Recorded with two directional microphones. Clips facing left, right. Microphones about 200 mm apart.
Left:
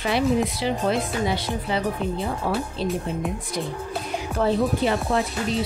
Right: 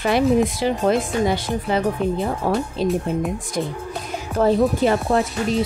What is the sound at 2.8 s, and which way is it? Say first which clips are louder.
Speech: right 6 dB; 45° right (ahead or behind).